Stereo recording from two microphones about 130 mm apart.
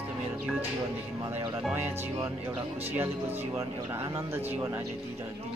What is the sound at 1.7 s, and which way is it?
Music, 20° right (ahead or behind).